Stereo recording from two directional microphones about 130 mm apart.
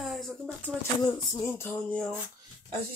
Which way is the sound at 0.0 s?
Centre (ahead or behind).